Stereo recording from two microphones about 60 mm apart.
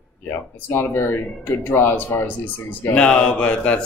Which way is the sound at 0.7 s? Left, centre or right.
Left.